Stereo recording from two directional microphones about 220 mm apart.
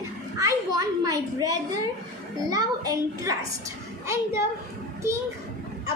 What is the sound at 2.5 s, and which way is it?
A child's voice, 15° right (ahead or behind).